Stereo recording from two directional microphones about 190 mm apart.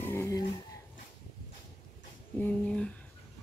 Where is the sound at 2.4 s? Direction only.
5° left (ahead or behind).